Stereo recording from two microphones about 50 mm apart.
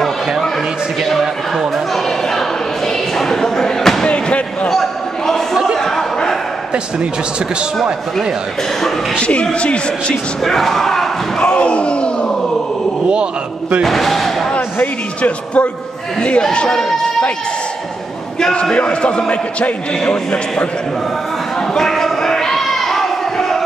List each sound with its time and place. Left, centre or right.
3.2 s slam: centre
4.6 s a sound: centre
9.2 s a man's voice: left
10.4 s speech: centre
11.4 s a sound: left
13.1 s a man's voice: centre
13.8 s speech: centre
14.8 s a man's voice: left
16.2 s speech: centre
18.4 s a man's voice: centre
21.7 s crowd: centre